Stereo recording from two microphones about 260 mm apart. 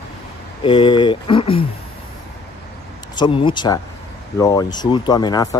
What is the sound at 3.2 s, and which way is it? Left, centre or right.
Speech, centre.